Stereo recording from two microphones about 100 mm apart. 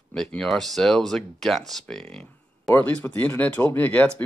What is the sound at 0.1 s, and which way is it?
Speech, 5° left (ahead or behind).